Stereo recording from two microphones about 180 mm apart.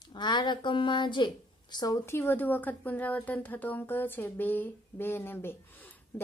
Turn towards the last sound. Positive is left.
turn(degrees=10)  # may be behind; listen again after turning